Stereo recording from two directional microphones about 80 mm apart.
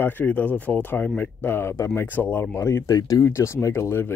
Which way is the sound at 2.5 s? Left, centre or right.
Left.